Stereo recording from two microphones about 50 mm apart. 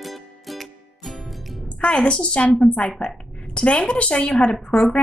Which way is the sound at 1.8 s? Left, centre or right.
Left.